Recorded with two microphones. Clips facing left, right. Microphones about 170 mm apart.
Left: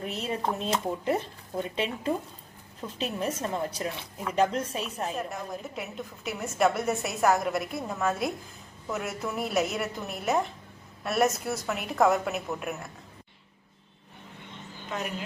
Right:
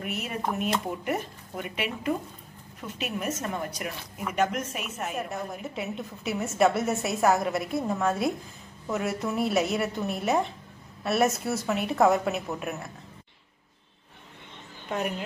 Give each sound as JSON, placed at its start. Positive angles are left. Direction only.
{"t": 0.0, "sound": "a woman's voice", "side_deg": 30}
{"t": 3.2, "sound": "a woman's voice", "side_deg": 30}
{"t": 5.1, "sound": "a woman's voice", "side_deg": 0}